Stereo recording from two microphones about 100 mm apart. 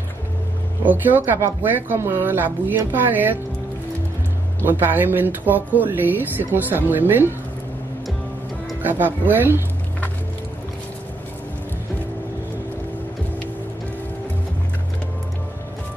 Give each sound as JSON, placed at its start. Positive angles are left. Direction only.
{"t": 0.8, "sound": "speech", "side_deg": -20}
{"t": 4.6, "sound": "speech", "side_deg": -20}
{"t": 8.8, "sound": "speech", "side_deg": -20}